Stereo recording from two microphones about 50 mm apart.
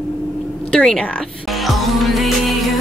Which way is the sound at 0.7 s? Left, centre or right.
Centre.